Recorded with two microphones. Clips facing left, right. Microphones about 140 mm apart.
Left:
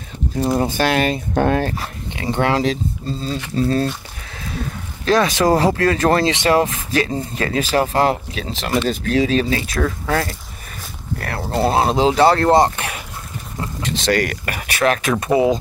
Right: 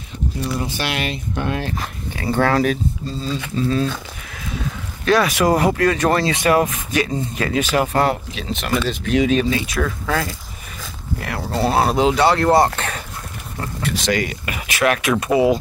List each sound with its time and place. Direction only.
0.5 s speech: 45° left (ahead or behind)
2.1 s speech: 20° left (ahead or behind)
3.2 s speech: 40° left (ahead or behind)
5.0 s speech: 30° left (ahead or behind)
11.5 s speech: 25° left (ahead or behind)
12.5 s speech: 15° left (ahead or behind)
14.2 s speech: 55° left (ahead or behind)
14.8 s speech: 30° left (ahead or behind)